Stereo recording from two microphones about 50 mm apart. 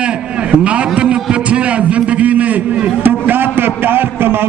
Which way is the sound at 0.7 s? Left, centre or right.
Right.